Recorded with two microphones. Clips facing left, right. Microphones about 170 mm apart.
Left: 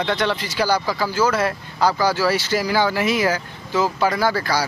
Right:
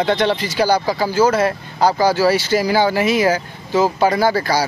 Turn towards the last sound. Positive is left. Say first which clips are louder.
# right 4 dB
turn(degrees=-15)  # may be behind; listen again after turning